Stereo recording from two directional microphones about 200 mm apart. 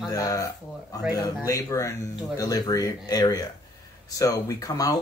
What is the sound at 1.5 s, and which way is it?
Speech, 15° left (ahead or behind).